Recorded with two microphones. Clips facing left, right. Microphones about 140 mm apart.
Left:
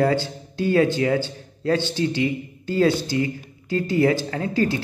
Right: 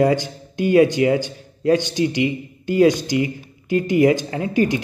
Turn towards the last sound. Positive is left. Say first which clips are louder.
# right 3 dB
turn(degrees=-15)  # may be behind; listen again after turning